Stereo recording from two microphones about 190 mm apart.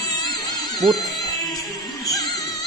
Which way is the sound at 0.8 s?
Centre (ahead or behind).